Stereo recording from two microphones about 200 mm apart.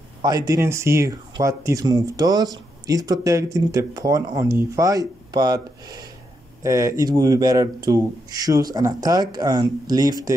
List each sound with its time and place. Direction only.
0.2 s speech: 20° right (ahead or behind)